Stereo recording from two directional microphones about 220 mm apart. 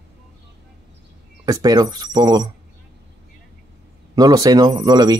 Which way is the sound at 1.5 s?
15° right (ahead or behind).